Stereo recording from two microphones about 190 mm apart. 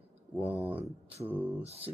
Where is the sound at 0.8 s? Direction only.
30° right (ahead or behind).